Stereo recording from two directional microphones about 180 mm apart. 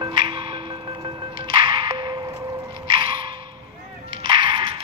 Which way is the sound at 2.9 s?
30° right (ahead or behind).